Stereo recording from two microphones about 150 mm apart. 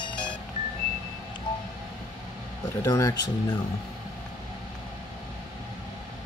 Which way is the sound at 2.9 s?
20° left (ahead or behind).